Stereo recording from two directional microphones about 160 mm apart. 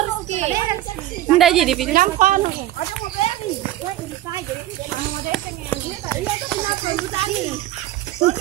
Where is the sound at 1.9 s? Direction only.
60° right (ahead or behind).